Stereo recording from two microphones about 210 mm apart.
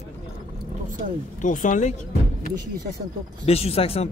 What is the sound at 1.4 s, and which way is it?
Speech, 40° left (ahead or behind).